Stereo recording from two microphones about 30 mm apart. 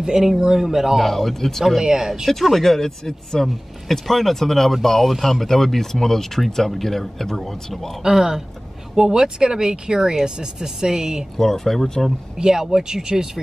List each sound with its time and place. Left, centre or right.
0.0 s speech: centre
1.8 s speech: centre
2.5 s speech: centre
8.0 s speech: centre
11.3 s speech: centre
12.4 s speech: centre
12.8 s speech: right